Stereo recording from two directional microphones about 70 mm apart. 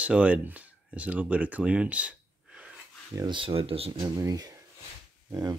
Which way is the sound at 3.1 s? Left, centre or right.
Right.